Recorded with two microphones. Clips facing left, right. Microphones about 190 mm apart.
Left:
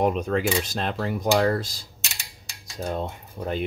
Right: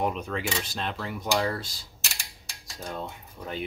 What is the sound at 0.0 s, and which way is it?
Speech, 45° left (ahead or behind).